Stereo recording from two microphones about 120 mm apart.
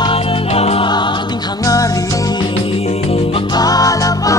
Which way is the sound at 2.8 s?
60° left (ahead or behind).